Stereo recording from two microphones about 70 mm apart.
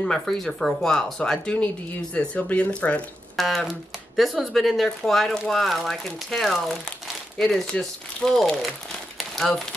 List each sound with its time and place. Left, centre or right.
0.0 s speech: centre
3.3 s speech: centre